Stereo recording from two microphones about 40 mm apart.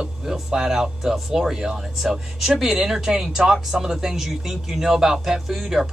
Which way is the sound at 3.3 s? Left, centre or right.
Centre.